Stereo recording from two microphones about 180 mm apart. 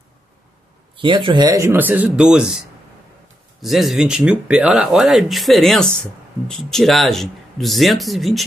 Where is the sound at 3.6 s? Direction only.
Centre (ahead or behind).